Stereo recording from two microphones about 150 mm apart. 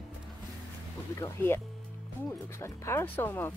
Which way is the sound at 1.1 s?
20° left (ahead or behind).